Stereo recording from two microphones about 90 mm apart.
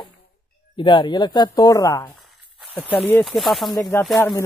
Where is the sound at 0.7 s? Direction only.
65° left (ahead or behind); by 2.1 s 45° left (ahead or behind).